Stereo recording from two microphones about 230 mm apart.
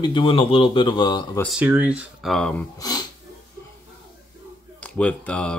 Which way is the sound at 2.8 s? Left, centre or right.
Centre.